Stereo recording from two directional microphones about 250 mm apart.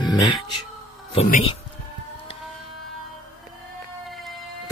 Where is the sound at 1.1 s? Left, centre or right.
Left.